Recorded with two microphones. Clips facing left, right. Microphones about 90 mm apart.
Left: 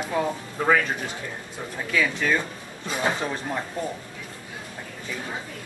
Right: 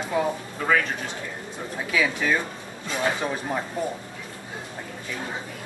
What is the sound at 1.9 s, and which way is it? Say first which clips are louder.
Speech: even; 10° right (ahead or behind).